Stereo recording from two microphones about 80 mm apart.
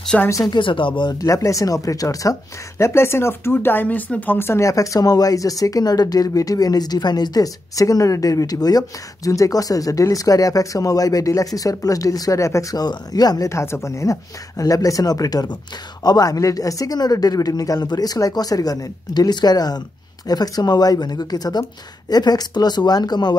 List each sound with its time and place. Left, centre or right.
0.1 s speech: centre
0.5 s speech: left
1.1 s speech: left
2.8 s speech: left
12.7 s speech: left
13.5 s speech: left